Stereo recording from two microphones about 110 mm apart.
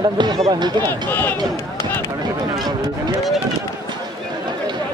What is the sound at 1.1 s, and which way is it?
Speech, 20° left (ahead or behind).